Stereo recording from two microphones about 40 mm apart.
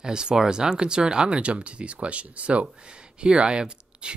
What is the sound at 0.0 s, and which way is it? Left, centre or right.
Speech, centre.